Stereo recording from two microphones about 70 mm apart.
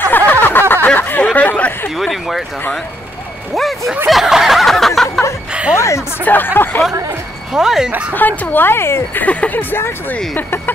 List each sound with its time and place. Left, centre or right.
0.0 s a sound: left
0.9 s speech: left
2.0 s speech: centre
3.5 s a sound: centre
5.5 s chuckle: centre
5.8 s a sound: left
6.2 s speech: left
7.5 s speech: centre
8.1 s speech: left
9.2 s speech: left